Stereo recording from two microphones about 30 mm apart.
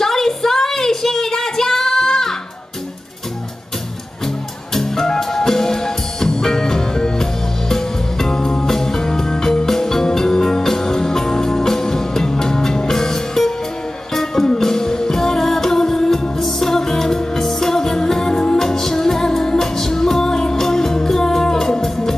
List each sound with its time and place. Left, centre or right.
0.0 s child singing: centre
4.7 s music: centre